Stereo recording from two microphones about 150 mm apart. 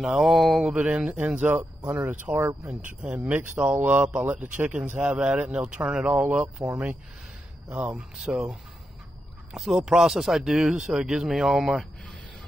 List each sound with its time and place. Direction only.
0.0 s speech: centre (ahead or behind)